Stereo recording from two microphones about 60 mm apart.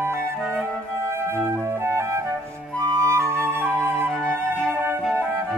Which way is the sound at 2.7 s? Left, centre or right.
Right.